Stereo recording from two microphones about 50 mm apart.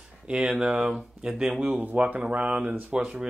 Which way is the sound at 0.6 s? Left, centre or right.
Centre.